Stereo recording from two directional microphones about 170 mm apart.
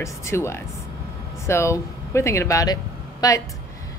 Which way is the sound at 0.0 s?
15° left (ahead or behind).